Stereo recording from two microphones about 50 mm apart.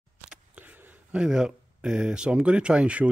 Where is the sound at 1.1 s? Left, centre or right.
Centre.